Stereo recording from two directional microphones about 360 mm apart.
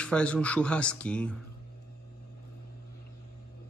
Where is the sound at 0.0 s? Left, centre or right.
Centre.